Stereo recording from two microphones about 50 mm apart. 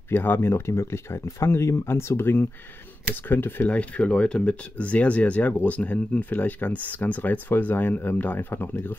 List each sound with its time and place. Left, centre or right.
0.1 s speech: left
3.7 s speech: left